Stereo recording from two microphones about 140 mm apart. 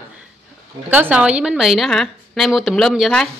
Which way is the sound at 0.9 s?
10° right (ahead or behind).